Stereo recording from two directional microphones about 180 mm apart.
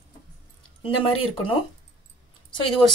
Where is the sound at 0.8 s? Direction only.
30° left (ahead or behind).